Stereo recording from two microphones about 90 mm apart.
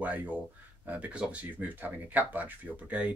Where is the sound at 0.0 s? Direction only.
20° right (ahead or behind).